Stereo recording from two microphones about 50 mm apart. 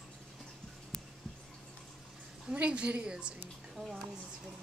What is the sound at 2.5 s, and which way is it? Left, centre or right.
Speech, right.